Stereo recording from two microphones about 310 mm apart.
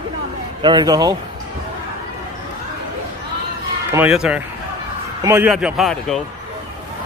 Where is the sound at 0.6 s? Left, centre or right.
Centre.